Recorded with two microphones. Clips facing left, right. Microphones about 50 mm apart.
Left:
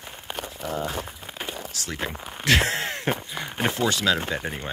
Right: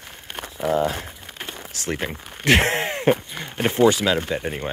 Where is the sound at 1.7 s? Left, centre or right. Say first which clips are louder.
Right 6 dB; right.